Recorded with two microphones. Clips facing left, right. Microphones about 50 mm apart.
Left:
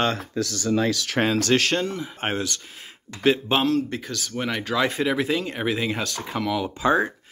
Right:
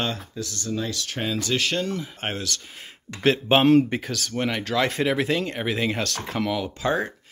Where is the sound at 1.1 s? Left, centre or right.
Left.